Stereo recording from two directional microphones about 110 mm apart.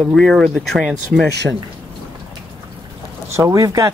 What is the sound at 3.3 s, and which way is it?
Speech, 25° right (ahead or behind).